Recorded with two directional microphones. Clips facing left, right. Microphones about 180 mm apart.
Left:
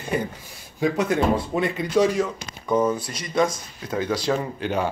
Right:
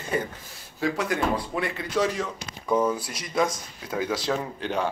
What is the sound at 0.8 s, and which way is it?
Speech, 20° left (ahead or behind).